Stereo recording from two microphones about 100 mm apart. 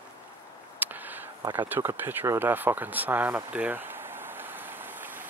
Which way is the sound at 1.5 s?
20° right (ahead or behind).